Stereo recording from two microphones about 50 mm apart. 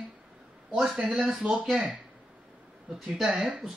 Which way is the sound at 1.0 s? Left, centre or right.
Centre.